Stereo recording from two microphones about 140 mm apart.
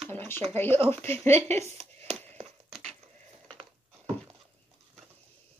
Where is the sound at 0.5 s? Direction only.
15° left (ahead or behind).